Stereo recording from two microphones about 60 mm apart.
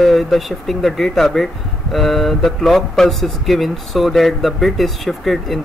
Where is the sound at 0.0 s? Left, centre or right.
Centre.